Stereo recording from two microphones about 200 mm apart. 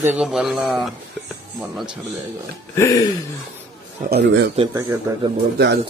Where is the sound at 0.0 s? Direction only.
5° right (ahead or behind).